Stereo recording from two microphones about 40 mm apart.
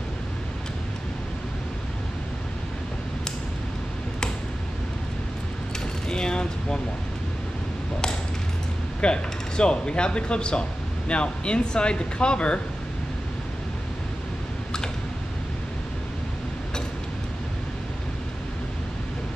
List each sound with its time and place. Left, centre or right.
6.0 s coin: left
9.0 s speech: left